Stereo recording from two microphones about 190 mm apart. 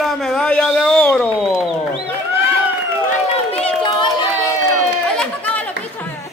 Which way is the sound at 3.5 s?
30° left (ahead or behind).